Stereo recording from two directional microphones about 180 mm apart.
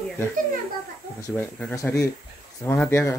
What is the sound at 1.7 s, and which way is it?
Speech, 15° left (ahead or behind).